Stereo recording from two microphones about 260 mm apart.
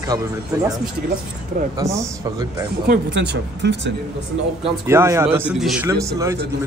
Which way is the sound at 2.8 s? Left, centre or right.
Right.